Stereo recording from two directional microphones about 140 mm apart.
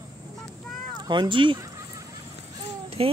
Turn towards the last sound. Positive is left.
turn(degrees=-45)  # may be behind; listen again after turning